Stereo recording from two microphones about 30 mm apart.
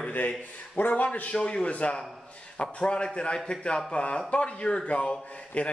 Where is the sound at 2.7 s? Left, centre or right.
Left.